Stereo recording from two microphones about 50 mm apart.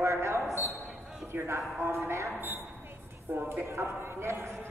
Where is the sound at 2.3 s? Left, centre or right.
Right.